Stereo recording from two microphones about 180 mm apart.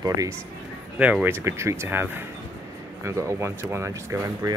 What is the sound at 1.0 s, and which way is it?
Speech, 10° right (ahead or behind).